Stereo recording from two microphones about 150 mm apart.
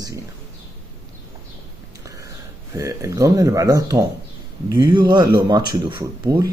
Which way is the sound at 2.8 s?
20° right (ahead or behind).